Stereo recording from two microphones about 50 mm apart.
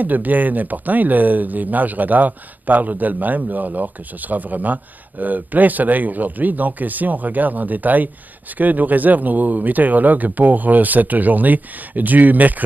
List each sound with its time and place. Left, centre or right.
0.0 s speech: right